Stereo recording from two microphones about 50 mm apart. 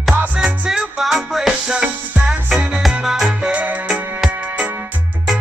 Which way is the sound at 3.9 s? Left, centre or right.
Right.